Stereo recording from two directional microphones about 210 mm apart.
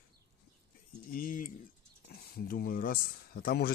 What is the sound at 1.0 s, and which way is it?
Speech, 40° left (ahead or behind).